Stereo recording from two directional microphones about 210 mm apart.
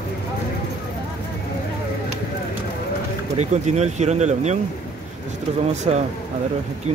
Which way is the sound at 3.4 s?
30° right (ahead or behind).